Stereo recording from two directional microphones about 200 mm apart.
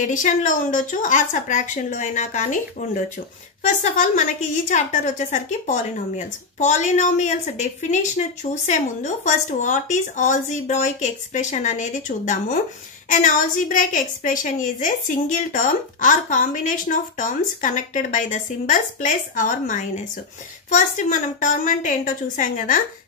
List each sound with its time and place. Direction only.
0.0 s a woman's voice: 40° left (ahead or behind)